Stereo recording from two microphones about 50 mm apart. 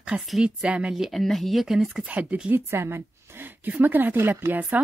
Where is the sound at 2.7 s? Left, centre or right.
Right.